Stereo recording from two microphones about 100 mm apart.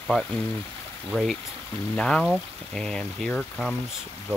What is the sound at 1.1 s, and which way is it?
Speech, centre (ahead or behind).